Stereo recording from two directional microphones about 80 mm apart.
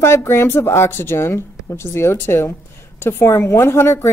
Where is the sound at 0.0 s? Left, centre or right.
Left.